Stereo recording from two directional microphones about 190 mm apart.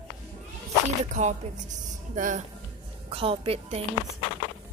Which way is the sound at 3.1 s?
30° right (ahead or behind).